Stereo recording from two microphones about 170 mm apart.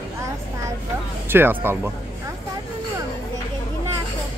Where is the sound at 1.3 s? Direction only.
10° right (ahead or behind).